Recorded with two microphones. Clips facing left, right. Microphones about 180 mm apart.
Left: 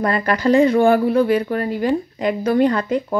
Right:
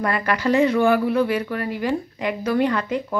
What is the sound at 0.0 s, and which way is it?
Speech, 35° left (ahead or behind).